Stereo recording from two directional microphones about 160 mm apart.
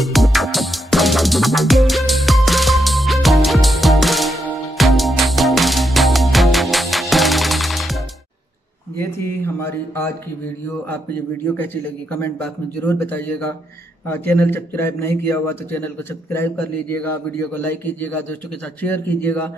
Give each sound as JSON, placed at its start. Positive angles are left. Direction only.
{"t": 0.0, "sound": "music", "side_deg": 0}
{"t": 8.9, "sound": "a sound", "side_deg": 15}
{"t": 11.5, "sound": "a man's voice", "side_deg": 10}